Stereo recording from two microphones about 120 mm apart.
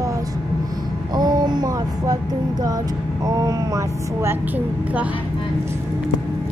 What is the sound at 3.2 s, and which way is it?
A woman's voice, 30° right (ahead or behind).